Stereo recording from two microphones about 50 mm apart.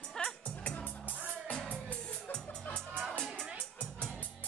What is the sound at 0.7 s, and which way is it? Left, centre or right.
Music, left.